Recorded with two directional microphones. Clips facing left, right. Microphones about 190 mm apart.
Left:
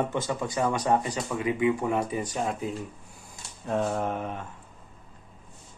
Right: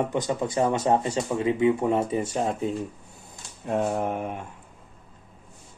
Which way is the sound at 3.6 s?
15° right (ahead or behind).